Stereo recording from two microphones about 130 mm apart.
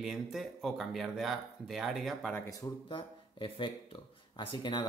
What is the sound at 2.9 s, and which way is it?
Speech, 40° left (ahead or behind).